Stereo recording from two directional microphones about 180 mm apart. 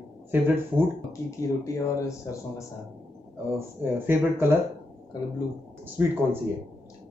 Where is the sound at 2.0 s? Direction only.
15° left (ahead or behind).